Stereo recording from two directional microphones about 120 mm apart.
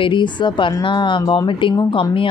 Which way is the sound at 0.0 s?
40° left (ahead or behind).